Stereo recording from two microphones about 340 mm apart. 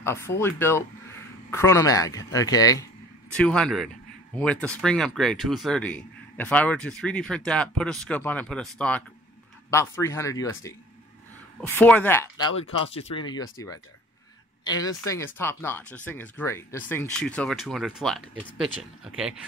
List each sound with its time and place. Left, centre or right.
0.0 s speech: centre